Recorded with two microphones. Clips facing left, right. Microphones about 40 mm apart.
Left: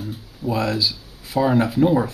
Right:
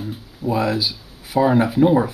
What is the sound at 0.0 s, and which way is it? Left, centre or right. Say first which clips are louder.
Speech: right 2 dB; centre.